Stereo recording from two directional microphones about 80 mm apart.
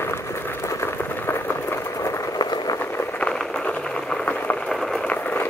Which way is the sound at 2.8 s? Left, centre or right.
Left.